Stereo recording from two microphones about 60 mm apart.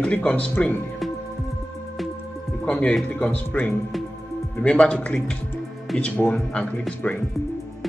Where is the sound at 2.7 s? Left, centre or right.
Left.